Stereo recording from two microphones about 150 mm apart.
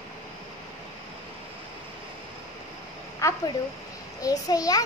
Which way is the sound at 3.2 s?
20° left (ahead or behind).